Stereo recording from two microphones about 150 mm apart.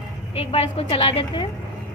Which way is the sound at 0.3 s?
40° left (ahead or behind).